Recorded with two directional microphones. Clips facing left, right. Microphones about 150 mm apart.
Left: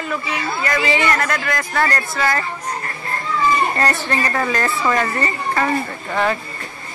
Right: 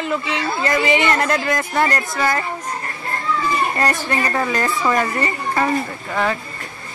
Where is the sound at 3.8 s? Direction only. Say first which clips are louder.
Even; 10° right (ahead or behind).